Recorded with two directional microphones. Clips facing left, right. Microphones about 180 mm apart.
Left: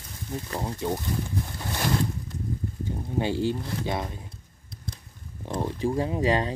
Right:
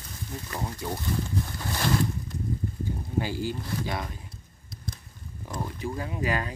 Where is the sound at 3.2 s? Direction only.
25° left (ahead or behind).